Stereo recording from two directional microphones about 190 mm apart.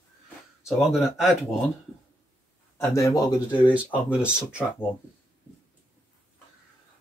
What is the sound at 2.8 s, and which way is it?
Speech, 15° left (ahead or behind).